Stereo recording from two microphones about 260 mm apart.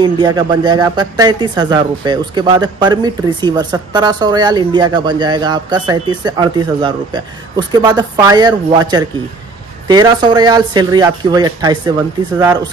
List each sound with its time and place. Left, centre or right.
0.0 s speech: centre